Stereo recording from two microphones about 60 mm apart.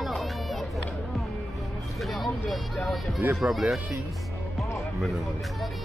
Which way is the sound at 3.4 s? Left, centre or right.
Right.